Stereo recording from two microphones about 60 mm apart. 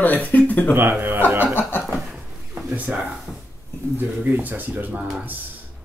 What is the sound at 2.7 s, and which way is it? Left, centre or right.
Speech, right.